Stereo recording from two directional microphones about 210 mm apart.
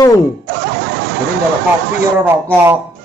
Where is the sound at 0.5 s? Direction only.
55° right (ahead or behind).